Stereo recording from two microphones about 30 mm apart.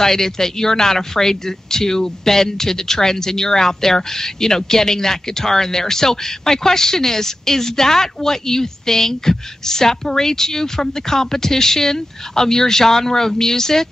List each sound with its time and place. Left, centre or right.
0.0 s speech: centre